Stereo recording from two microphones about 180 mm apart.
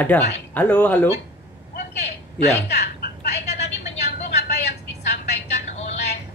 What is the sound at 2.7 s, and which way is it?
Speech, 65° left (ahead or behind).